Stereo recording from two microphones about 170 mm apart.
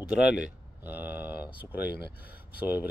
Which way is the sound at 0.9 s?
10° right (ahead or behind).